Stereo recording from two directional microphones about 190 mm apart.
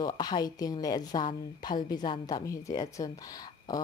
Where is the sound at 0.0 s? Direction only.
20° left (ahead or behind).